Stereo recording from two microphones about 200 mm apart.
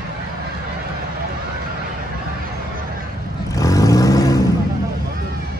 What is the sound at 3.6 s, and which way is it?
Vehicle, 15° left (ahead or behind).